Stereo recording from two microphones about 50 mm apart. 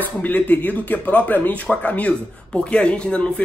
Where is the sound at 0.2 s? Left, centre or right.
Left.